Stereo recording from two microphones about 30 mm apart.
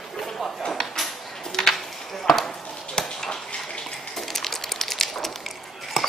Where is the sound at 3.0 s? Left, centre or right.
Left.